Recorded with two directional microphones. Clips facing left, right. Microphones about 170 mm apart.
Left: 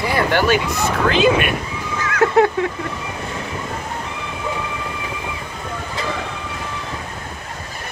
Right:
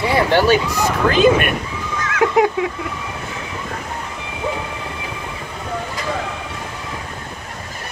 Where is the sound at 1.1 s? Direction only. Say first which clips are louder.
Right 3 dB; 45° right (ahead or behind).